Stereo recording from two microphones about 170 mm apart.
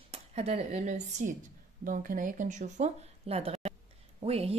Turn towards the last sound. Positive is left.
turn(degrees=-35)  # may be behind; listen again after turning